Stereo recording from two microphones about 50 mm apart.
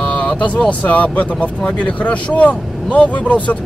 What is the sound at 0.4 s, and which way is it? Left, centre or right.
Speech, left.